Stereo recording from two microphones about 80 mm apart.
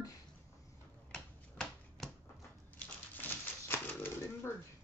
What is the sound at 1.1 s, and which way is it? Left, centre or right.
Typewriter, centre.